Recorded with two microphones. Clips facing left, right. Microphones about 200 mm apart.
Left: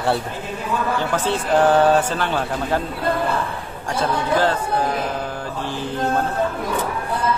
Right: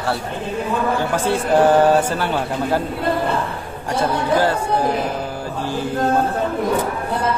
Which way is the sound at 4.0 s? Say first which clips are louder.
Right 2 dB; 10° right (ahead or behind).